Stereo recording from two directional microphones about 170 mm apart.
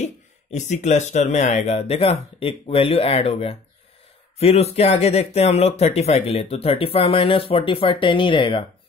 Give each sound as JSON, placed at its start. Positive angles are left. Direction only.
{"t": 0.0, "sound": "speech", "side_deg": 40}